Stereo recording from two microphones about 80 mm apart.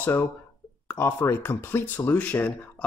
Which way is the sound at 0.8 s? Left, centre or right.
Left.